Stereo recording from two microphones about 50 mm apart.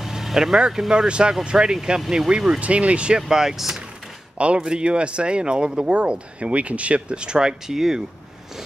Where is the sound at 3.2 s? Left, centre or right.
Centre.